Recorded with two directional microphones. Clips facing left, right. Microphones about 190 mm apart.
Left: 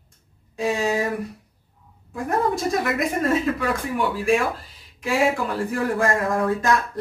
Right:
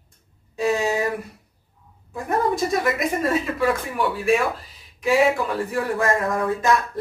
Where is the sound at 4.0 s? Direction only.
Centre (ahead or behind).